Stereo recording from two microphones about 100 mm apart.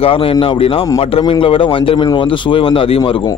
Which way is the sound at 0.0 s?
70° left (ahead or behind).